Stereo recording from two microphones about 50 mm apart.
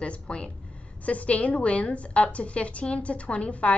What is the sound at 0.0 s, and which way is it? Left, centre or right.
A woman's voice, left.